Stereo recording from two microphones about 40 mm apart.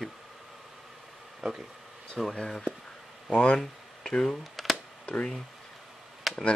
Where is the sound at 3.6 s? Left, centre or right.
Centre.